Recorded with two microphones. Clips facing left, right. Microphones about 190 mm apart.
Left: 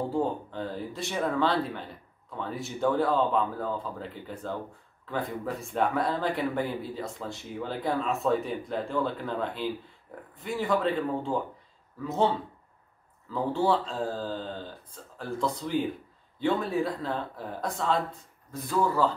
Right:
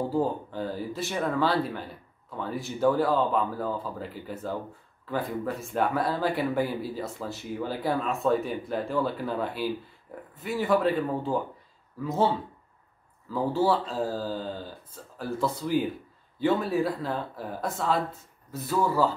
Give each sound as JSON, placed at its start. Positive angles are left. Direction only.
{"t": 0.1, "sound": "speech", "side_deg": -5}
{"t": 13.3, "sound": "speech", "side_deg": -5}